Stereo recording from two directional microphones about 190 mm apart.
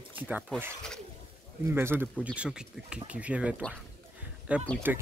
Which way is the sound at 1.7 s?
10° right (ahead or behind).